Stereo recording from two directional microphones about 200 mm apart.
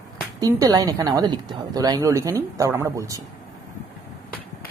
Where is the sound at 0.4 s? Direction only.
15° right (ahead or behind).